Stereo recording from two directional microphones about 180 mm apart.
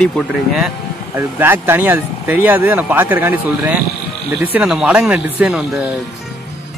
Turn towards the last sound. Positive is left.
turn(degrees=-5)  # may be behind; listen again after turning